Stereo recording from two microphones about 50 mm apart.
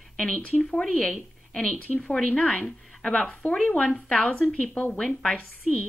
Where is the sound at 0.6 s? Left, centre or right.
Centre.